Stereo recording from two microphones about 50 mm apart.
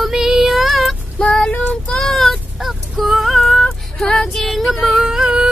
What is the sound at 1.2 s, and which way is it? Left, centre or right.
Child singing, left.